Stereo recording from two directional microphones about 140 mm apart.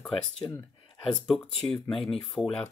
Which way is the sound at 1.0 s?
Centre (ahead or behind).